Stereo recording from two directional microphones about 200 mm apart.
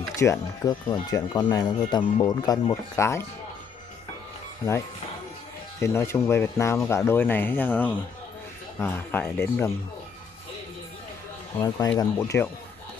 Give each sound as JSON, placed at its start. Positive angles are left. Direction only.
{"t": 0.1, "sound": "speech", "side_deg": 15}
{"t": 5.8, "sound": "speech", "side_deg": 10}
{"t": 12.0, "sound": "speech", "side_deg": 15}